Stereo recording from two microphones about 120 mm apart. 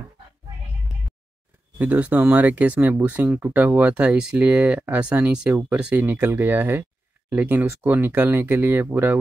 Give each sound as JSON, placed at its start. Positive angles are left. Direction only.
{"t": 1.8, "sound": "speech", "side_deg": -10}